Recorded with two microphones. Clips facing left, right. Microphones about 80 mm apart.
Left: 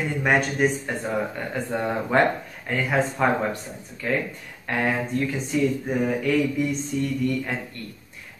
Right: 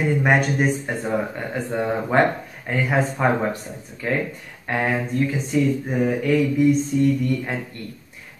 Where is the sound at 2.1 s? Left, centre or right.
Centre.